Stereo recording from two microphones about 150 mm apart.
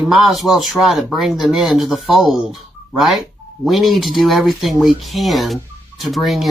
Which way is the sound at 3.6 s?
Centre (ahead or behind).